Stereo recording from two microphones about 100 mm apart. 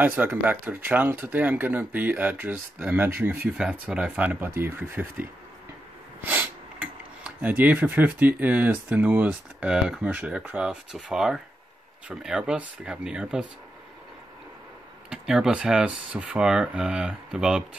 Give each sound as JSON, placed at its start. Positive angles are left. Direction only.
{"t": 0.0, "sound": "speech", "side_deg": -20}
{"t": 3.7, "sound": "speech", "side_deg": -10}
{"t": 4.5, "sound": "speech", "side_deg": -25}
{"t": 6.2, "sound": "speech", "side_deg": -15}
{"t": 15.0, "sound": "speech", "side_deg": -5}